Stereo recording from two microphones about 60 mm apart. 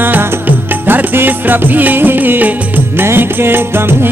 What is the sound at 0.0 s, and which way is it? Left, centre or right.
Music, right.